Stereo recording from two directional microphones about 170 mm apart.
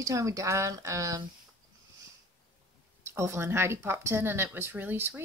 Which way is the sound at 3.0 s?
15° right (ahead or behind).